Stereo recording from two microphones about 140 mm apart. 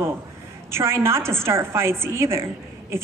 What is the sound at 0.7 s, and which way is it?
A woman's voice, 20° right (ahead or behind).